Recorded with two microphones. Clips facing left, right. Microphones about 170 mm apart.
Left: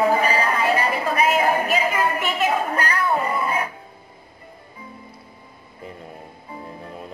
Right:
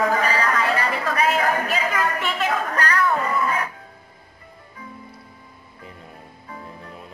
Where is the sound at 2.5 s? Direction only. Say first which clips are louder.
Left 1 dB; 25° left (ahead or behind).